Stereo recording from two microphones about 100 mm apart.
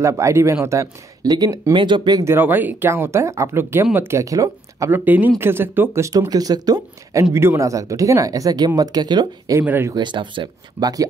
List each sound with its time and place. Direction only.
0.0 s speech: 30° right (ahead or behind); by 2.2 s 45° right (ahead or behind)
2.2 s speech: 20° right (ahead or behind)
4.9 s speech: 15° right (ahead or behind); by 7.2 s 40° right (ahead or behind)
7.3 s speech: 30° right (ahead or behind); by 9.6 s 45° right (ahead or behind)
9.6 s speech: 25° right (ahead or behind)
9.9 s speech: 50° right (ahead or behind)